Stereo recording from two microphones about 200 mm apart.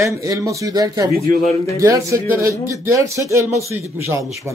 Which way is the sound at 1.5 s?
15° left (ahead or behind).